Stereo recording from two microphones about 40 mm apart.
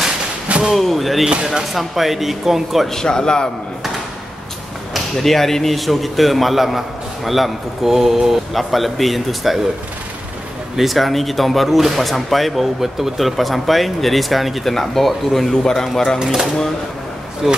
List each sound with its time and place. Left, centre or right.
0.7 s speech: centre
2.9 s a man's voice: centre
4.9 s speech: centre
10.8 s speech: centre
16.2 s speech: centre